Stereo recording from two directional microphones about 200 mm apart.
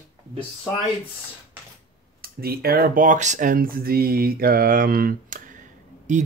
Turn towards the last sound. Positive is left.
turn(degrees=-35)  # may be behind; listen again after turning